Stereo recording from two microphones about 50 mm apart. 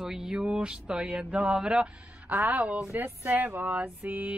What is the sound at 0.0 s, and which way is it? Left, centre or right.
Speech, centre.